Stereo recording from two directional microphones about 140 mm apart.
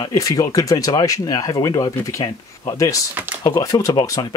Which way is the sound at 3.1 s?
15° right (ahead or behind).